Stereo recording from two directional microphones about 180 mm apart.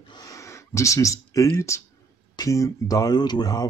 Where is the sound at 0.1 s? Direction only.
20° left (ahead or behind).